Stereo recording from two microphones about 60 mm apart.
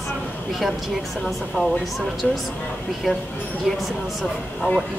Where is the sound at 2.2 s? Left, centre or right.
Centre.